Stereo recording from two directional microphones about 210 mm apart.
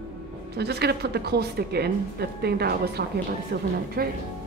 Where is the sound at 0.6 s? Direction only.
50° right (ahead or behind).